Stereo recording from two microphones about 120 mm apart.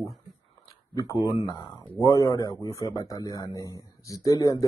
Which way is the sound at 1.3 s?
30° left (ahead or behind).